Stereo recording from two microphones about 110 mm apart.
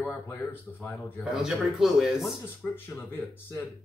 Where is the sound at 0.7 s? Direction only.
25° left (ahead or behind).